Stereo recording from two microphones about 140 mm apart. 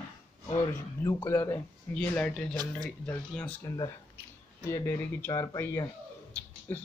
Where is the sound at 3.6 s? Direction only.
30° left (ahead or behind).